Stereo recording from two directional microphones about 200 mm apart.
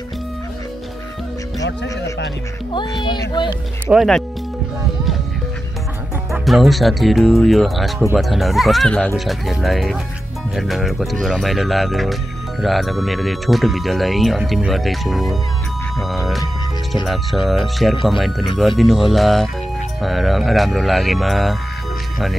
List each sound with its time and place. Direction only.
2.7 s speech: 20° left (ahead or behind)
3.8 s speech: centre (ahead or behind)
6.3 s speech: centre (ahead or behind)
16.9 s speech: centre (ahead or behind)